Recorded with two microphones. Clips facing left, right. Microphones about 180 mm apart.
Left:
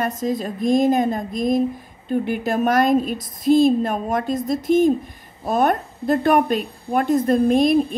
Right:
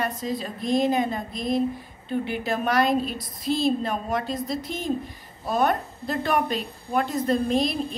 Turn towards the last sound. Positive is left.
turn(degrees=50)  # may be behind; listen again after turning